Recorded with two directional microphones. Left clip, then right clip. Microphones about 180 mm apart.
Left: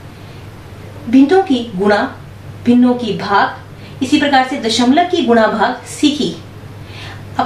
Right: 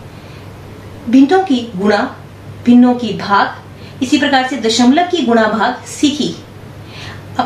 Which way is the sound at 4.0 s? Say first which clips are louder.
Left 1 dB; 5° right (ahead or behind).